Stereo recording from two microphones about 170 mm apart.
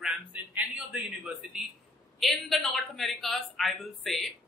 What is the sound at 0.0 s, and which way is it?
A man's voice, 5° right (ahead or behind).